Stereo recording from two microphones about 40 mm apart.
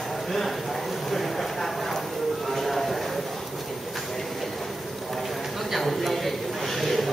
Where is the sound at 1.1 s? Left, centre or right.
Centre.